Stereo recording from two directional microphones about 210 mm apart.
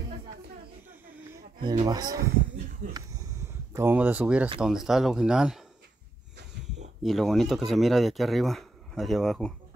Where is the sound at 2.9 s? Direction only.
15° right (ahead or behind).